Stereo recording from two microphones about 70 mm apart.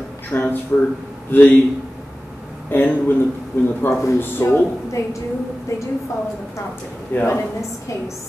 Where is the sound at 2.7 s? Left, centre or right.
Left.